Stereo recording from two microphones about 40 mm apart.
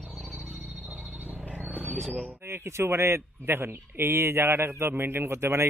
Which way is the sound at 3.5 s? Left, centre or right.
Right.